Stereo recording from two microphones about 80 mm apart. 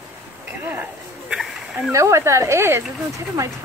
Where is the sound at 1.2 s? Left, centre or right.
Centre.